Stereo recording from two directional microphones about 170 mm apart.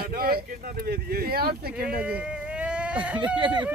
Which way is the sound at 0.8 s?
65° right (ahead or behind).